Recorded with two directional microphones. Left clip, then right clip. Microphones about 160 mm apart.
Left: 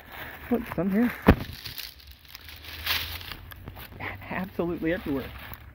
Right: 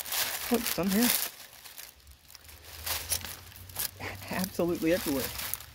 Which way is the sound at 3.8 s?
10° right (ahead or behind).